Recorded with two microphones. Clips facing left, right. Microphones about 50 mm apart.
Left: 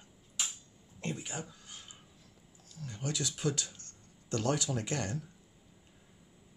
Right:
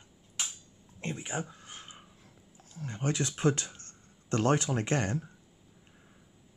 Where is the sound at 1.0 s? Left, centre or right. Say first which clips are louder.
Right 3 dB; right.